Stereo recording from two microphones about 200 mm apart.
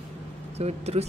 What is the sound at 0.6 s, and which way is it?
Speech, 30° right (ahead or behind).